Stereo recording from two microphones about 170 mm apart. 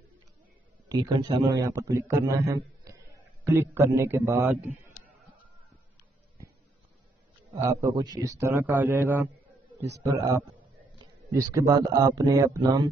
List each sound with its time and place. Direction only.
0.8 s a man's voice: 20° right (ahead or behind)
3.7 s a man's voice: 15° right (ahead or behind)
7.6 s a man's voice: 15° right (ahead or behind)